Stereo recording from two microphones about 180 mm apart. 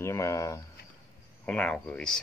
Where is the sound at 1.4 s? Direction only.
5° left (ahead or behind).